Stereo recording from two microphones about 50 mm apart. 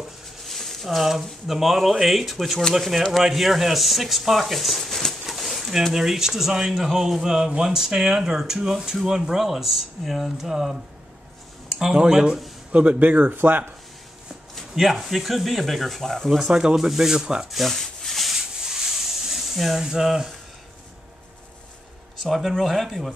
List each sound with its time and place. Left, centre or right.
0.5 s a sound: centre
0.8 s speech: centre
5.2 s a sound: centre
5.9 s speech: centre
12.7 s speech: right
14.8 s speech: centre
16.3 s speech: centre
17.5 s rub: centre
22.2 s speech: centre